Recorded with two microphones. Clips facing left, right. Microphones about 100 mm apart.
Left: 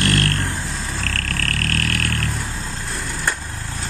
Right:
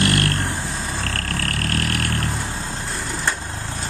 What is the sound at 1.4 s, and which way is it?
Vehicle, 25° right (ahead or behind).